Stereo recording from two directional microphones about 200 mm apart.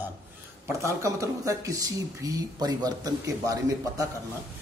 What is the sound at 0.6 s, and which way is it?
Speech, 15° right (ahead or behind).